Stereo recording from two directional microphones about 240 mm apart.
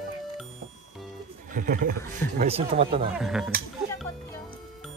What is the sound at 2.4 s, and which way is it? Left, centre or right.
Speech, right.